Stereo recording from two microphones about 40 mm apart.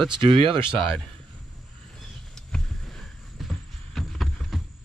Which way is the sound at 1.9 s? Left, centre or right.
Centre.